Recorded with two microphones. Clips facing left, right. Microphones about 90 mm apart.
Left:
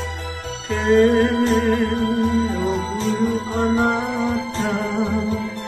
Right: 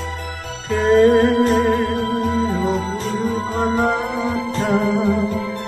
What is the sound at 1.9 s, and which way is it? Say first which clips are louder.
Music: even; 45° right (ahead or behind).